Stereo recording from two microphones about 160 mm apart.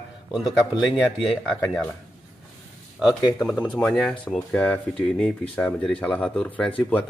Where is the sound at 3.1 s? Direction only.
25° left (ahead or behind).